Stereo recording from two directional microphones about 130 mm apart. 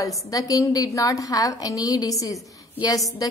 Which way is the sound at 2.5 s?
30° left (ahead or behind).